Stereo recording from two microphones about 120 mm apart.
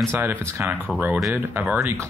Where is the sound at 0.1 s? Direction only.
20° right (ahead or behind).